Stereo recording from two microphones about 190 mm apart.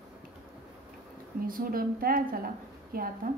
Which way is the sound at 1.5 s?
50° right (ahead or behind).